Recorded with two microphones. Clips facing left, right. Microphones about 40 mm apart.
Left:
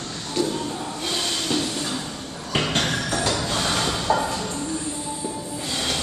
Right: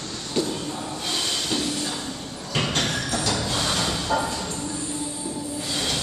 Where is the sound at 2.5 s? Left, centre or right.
Centre.